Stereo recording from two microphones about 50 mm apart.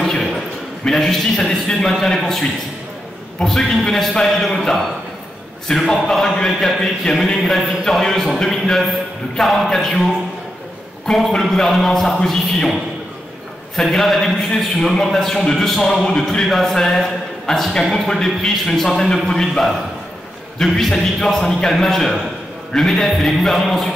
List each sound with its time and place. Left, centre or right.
0.0 s a sound: centre
0.8 s a man's voice: centre
3.5 s a man's voice: centre
5.8 s speech: centre
6.0 s a man's voice: centre
13.7 s a man's voice: centre